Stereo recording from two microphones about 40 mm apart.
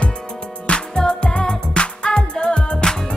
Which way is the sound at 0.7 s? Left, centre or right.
Left.